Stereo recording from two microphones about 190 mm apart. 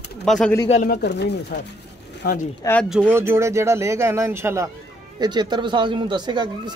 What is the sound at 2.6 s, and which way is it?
Speech, 10° left (ahead or behind).